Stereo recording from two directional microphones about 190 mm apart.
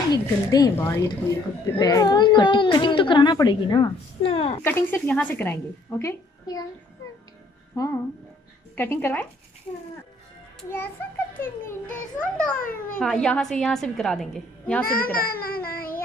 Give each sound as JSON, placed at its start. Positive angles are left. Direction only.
{"t": 0.1, "sound": "speech", "side_deg": 20}
{"t": 4.6, "sound": "a woman's voice", "side_deg": 10}
{"t": 7.7, "sound": "a woman's voice", "side_deg": 15}
{"t": 10.6, "sound": "a child's voice", "side_deg": 10}
{"t": 12.5, "sound": "a child's voice", "side_deg": 50}
{"t": 13.0, "sound": "a woman's voice", "side_deg": 5}
{"t": 14.9, "sound": "a child's voice", "side_deg": 50}